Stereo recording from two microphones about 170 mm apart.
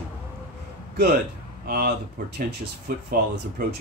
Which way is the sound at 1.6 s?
65° right (ahead or behind).